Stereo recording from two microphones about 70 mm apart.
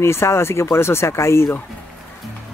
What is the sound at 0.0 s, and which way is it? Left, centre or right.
Speech, left.